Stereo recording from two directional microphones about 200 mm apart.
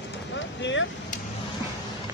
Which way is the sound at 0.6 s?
65° left (ahead or behind).